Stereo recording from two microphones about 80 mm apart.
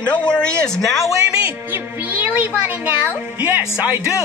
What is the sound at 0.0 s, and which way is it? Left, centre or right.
Speech, centre.